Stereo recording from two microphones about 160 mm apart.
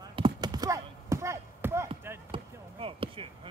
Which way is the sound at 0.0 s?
30° right (ahead or behind).